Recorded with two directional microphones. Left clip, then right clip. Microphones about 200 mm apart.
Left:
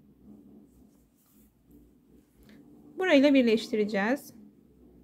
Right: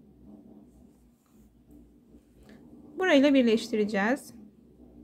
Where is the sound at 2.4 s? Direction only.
Centre (ahead or behind).